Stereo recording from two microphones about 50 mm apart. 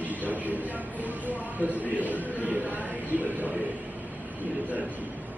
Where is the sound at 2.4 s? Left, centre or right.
Right.